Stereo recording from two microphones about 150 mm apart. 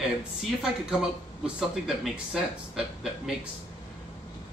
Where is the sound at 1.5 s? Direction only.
5° right (ahead or behind).